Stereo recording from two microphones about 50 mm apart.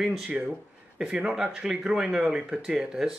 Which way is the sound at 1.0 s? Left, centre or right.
Centre.